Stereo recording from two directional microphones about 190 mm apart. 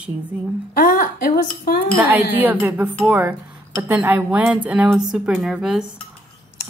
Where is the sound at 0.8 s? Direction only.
50° left (ahead or behind).